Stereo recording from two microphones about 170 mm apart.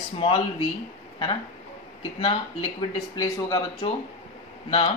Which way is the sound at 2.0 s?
30° left (ahead or behind).